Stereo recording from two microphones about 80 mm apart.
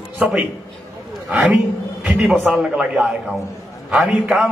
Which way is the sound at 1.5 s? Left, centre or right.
Centre.